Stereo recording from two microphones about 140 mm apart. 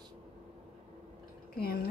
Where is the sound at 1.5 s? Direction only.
90° left.